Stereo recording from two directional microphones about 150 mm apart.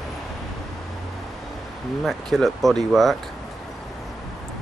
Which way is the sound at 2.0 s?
Centre (ahead or behind).